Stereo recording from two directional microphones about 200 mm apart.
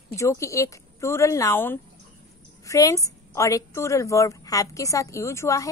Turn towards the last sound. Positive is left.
turn(degrees=15)  # may be behind; listen again after turning